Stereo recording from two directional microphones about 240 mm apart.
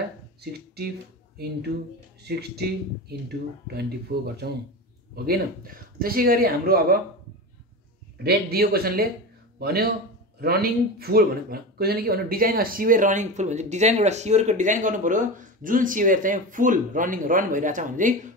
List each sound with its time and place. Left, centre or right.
0.4 s speech: right
2.2 s speech: right
8.2 s speech: right